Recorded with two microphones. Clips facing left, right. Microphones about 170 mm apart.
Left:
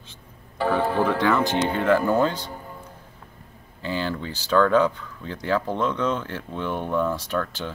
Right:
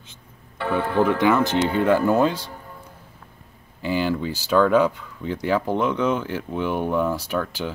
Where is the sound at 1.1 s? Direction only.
20° right (ahead or behind).